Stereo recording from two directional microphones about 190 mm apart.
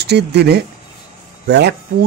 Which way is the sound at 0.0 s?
60° right (ahead or behind).